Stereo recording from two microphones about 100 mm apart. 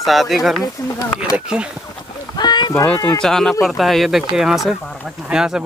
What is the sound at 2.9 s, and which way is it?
Speech, 40° left (ahead or behind).